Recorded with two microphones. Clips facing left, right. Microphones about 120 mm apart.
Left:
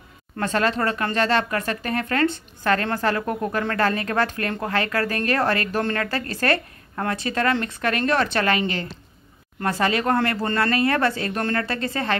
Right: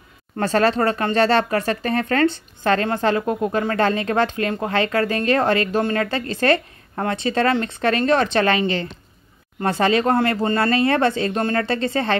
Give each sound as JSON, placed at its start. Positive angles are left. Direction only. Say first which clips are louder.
{"t": 0.4, "sound": "speech", "louder": "right 4 dB", "side_deg": -35}